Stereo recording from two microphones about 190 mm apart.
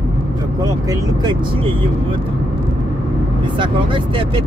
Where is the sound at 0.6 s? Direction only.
20° right (ahead or behind).